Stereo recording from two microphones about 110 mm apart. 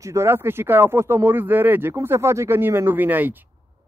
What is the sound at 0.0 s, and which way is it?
A man's voice, 25° right (ahead or behind).